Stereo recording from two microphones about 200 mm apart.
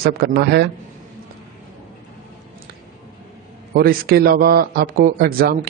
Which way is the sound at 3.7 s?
50° right (ahead or behind).